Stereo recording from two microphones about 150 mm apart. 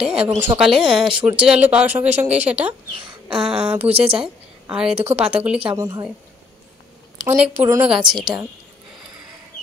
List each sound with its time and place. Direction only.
0.0 s a woman's voice: 5° right (ahead or behind)
4.9 s speech: 40° right (ahead or behind)
5.4 s speech: 10° right (ahead or behind)
5.8 s a woman's voice: 25° right (ahead or behind)
7.2 s speech: 10° right (ahead or behind)